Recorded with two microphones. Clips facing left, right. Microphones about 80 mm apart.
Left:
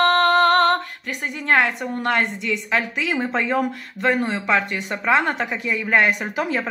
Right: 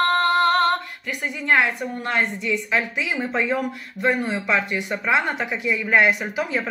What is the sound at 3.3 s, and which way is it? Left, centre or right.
Speech, left.